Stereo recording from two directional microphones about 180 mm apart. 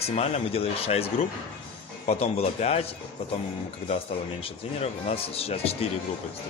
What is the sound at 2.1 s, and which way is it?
Speech, 35° left (ahead or behind).